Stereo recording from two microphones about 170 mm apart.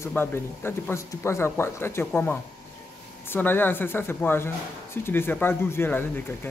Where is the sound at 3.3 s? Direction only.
10° left (ahead or behind).